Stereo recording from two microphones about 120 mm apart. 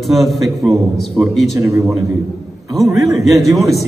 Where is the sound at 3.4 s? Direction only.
30° right (ahead or behind).